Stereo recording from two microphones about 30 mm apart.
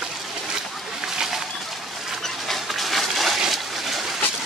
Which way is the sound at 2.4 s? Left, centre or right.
Centre.